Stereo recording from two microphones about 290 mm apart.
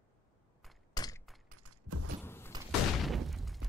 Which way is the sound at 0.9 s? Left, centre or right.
Centre.